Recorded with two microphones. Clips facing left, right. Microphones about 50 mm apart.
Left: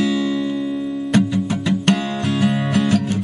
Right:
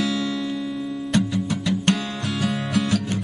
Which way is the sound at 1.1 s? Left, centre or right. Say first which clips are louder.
Left 4 dB; left.